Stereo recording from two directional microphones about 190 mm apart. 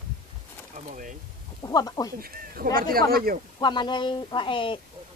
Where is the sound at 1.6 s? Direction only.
20° left (ahead or behind).